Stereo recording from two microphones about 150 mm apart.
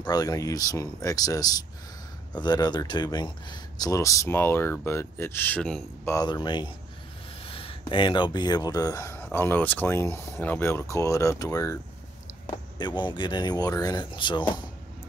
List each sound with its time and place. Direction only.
0.0 s speech: 25° left (ahead or behind); by 5.9 s 5° left (ahead or behind)
6.0 s speech: 25° left (ahead or behind)